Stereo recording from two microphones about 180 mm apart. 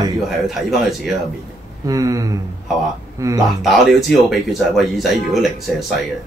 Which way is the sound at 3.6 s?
Centre (ahead or behind).